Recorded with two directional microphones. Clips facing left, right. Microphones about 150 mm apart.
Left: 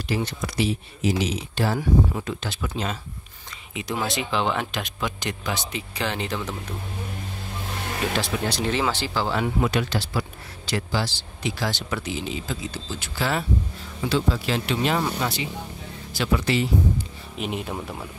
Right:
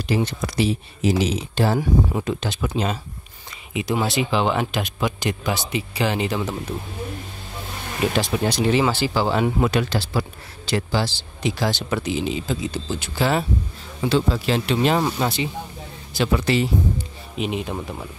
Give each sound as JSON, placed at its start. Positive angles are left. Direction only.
{"t": 0.1, "sound": "speech", "side_deg": -20}
{"t": 0.6, "sound": "speech", "side_deg": -35}
{"t": 8.2, "sound": "speech", "side_deg": -15}
{"t": 9.6, "sound": "speech", "side_deg": -40}
{"t": 16.3, "sound": "speech", "side_deg": -40}
{"t": 17.4, "sound": "speech", "side_deg": 0}